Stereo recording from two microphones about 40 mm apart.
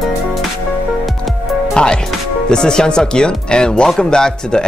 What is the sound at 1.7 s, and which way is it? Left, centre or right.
Speech, left.